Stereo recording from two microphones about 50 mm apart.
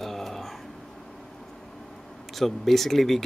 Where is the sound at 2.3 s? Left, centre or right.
Centre.